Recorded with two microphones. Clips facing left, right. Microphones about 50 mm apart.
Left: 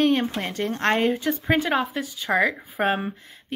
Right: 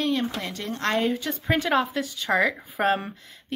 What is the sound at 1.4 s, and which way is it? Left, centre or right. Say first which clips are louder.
A woman's voice: right 1 dB; centre.